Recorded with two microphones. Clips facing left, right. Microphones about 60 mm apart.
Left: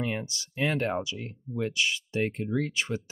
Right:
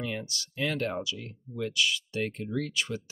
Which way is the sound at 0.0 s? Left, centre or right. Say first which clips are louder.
Left 3 dB; left.